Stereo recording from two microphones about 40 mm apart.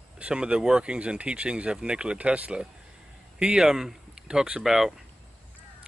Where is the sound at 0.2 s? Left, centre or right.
Right.